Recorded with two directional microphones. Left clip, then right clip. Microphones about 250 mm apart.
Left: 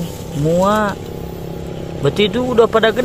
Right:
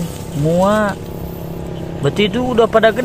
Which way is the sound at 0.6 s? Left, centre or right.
Centre.